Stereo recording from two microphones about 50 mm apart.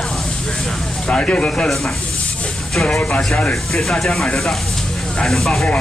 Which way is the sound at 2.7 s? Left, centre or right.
Centre.